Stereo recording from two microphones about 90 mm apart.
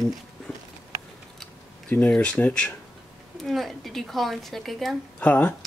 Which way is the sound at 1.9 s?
15° left (ahead or behind).